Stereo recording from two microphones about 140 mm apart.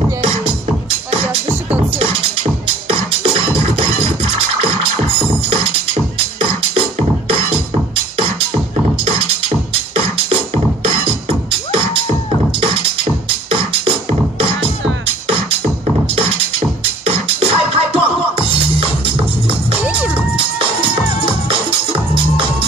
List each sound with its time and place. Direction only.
2.0 s music: 40° right (ahead or behind)
9.9 s music: 40° right (ahead or behind)
13.5 s music: 40° right (ahead or behind)
19.8 s music: 10° right (ahead or behind)
20.2 s music: 40° right (ahead or behind)